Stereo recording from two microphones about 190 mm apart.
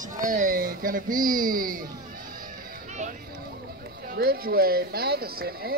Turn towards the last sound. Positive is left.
turn(degrees=-55)  # may be behind; listen again after turning